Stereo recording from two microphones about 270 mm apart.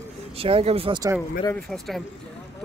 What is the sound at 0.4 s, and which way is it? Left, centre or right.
Speech, right.